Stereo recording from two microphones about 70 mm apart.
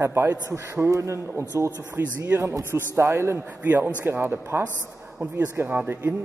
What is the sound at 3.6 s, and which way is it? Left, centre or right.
A man's voice, right.